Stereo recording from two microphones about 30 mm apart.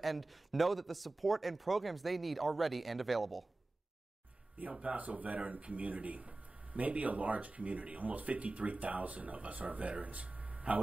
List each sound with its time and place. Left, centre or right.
0.0 s speech: centre
4.8 s speech: right
5.6 s speech: right
6.7 s speech: right